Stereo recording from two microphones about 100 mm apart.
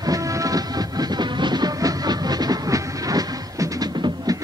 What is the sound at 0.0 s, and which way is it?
Music, 35° right (ahead or behind).